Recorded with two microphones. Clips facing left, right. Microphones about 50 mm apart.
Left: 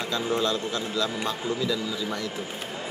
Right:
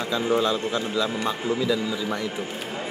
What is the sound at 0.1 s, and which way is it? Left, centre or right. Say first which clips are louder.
A man's voice: right 4 dB; centre.